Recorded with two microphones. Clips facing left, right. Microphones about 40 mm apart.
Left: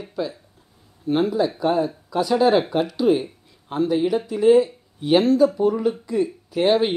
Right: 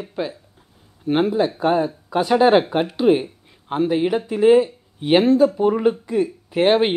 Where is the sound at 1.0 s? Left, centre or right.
Right.